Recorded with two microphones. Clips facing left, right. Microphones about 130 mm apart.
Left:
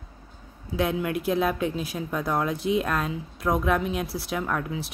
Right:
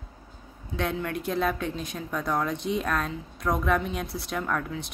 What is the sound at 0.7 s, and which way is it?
Speech, 5° left (ahead or behind).